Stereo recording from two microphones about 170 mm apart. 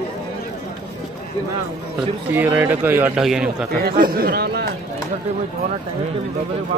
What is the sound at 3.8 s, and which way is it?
Speech, 65° right (ahead or behind).